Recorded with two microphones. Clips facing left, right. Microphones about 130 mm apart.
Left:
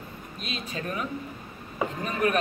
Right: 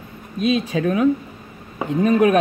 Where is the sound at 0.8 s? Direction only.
90° right.